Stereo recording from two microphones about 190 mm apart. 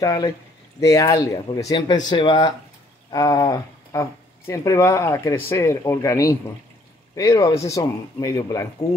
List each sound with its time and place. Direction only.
0.0 s speech: 20° left (ahead or behind)